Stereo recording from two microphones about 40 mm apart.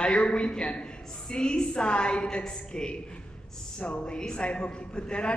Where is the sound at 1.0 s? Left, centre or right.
Centre.